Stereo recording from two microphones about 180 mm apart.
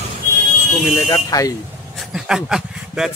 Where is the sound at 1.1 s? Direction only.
20° left (ahead or behind).